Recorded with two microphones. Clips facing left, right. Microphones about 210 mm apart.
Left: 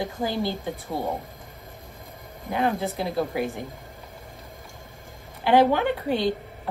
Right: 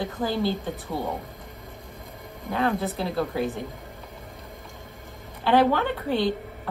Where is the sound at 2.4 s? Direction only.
15° left (ahead or behind).